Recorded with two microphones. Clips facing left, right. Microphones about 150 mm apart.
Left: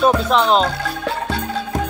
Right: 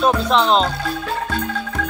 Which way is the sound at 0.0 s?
5° left (ahead or behind).